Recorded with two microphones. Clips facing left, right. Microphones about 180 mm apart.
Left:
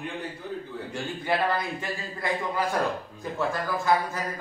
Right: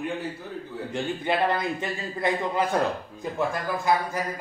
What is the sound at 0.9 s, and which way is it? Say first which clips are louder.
A man's voice: right 2 dB; 20° right (ahead or behind).